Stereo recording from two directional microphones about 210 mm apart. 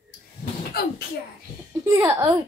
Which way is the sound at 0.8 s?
45° left (ahead or behind).